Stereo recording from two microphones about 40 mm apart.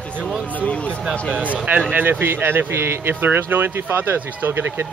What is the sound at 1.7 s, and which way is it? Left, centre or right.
Speech, right.